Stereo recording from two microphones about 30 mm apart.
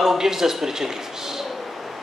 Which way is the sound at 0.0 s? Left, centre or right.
Centre.